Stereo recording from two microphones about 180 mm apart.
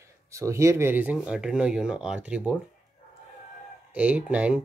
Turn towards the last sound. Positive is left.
turn(degrees=-5)  # may be behind; listen again after turning